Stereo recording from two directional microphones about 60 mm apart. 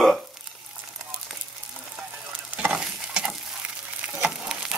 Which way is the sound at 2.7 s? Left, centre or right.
Centre.